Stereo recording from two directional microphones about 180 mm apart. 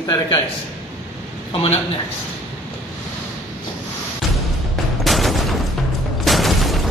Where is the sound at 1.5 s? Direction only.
35° left (ahead or behind).